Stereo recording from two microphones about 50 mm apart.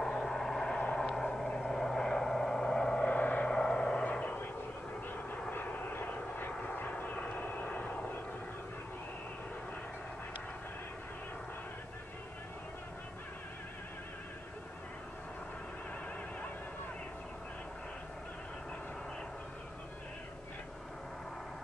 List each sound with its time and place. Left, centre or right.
0.0 s vehicle: centre
3.1 s vehicle: left
3.4 s vehicle: centre
4.0 s vehicle: left
5.5 s vehicle: left